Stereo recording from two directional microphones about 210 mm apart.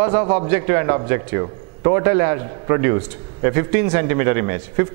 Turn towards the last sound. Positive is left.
turn(degrees=-15)  # may be behind; listen again after turning